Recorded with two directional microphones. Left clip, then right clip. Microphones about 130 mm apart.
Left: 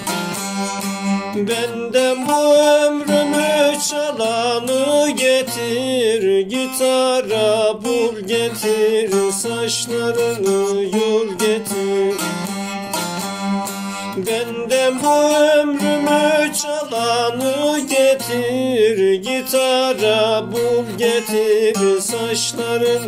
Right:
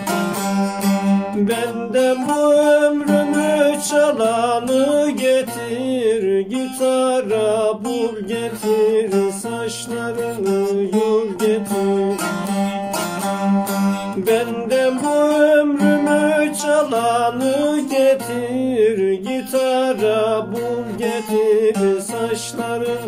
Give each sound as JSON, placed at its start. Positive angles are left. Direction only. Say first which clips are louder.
{"t": 0.6, "sound": "music", "louder": "right 3 dB", "side_deg": 25}
{"t": 1.5, "sound": "music", "louder": "left 3 dB", "side_deg": 0}
{"t": 3.1, "sound": "music", "louder": "left 1 dB", "side_deg": 25}
{"t": 3.5, "sound": "music", "louder": "right 1 dB", "side_deg": 0}
{"t": 10.2, "sound": "music", "louder": "left 3 dB", "side_deg": 25}
{"t": 11.1, "sound": "music", "louder": "left 1 dB", "side_deg": 0}
{"t": 14.3, "sound": "music", "louder": "right 1 dB", "side_deg": 0}
{"t": 15.8, "sound": "music", "louder": "right 1 dB", "side_deg": 25}
{"t": 16.1, "sound": "music", "louder": "left 1 dB", "side_deg": 0}